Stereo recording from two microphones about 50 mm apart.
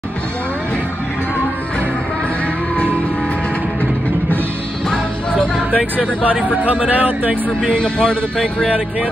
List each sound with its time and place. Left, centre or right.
4.8 s music: centre
6.2 s speech: right
7.6 s speech: centre